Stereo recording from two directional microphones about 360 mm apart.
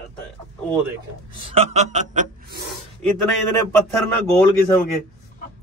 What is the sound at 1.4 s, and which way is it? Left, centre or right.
Speech, centre.